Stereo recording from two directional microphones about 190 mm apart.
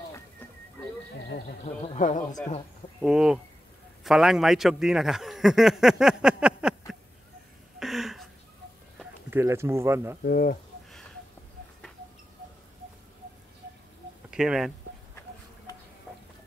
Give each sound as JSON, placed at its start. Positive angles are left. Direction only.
{"t": 2.0, "sound": "speech", "side_deg": 40}
{"t": 3.0, "sound": "a man's voice", "side_deg": -5}
{"t": 7.8, "sound": "a sound", "side_deg": 0}
{"t": 9.3, "sound": "speech", "side_deg": -15}
{"t": 10.2, "sound": "speech", "side_deg": 50}
{"t": 14.3, "sound": "speech", "side_deg": -5}
{"t": 16.1, "sound": "a sound", "side_deg": 5}